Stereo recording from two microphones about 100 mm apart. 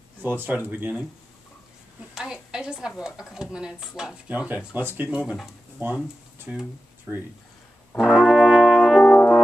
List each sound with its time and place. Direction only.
0.2 s speech: 20° right (ahead or behind)
2.1 s a woman's voice: 5° right (ahead or behind)
5.8 s speech: 20° right (ahead or behind)
8.0 s brass instrument: 5° right (ahead or behind)
9.1 s french horn: 15° left (ahead or behind)